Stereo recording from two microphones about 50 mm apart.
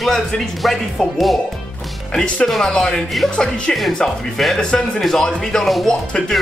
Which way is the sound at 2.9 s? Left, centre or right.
Centre.